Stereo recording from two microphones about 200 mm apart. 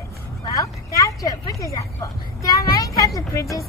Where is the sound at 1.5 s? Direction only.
15° left (ahead or behind).